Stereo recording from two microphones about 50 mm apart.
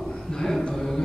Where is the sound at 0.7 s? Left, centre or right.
Centre.